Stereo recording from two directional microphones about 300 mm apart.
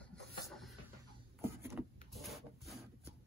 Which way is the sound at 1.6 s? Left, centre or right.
Centre.